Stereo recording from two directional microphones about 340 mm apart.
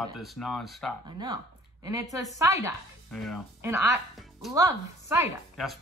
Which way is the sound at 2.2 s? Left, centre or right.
Centre.